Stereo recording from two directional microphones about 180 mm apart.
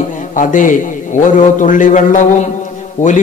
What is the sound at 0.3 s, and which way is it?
A man's voice, 45° left (ahead or behind).